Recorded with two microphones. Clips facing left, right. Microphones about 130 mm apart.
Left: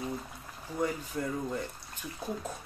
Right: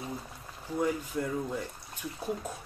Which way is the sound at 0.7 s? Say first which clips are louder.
Right 2 dB; 5° right (ahead or behind).